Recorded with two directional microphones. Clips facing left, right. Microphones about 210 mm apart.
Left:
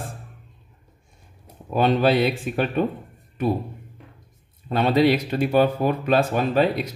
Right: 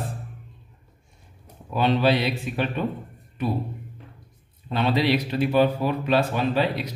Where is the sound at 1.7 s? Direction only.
50° left (ahead or behind).